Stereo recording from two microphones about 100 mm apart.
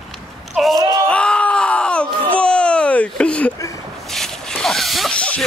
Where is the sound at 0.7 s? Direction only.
35° right (ahead or behind).